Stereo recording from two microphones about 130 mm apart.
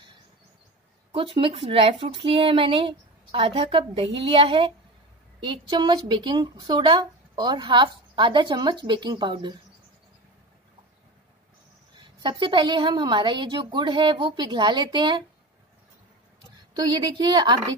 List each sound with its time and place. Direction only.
1.1 s a woman's voice: 40° right (ahead or behind)
11.9 s a woman's voice: 35° right (ahead or behind)
16.7 s a woman's voice: 35° right (ahead or behind)